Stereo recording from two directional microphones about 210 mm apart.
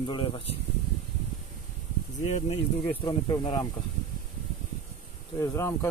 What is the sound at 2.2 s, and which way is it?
Speech, 30° left (ahead or behind).